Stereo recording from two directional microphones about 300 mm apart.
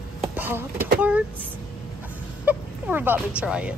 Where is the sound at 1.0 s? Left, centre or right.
Centre.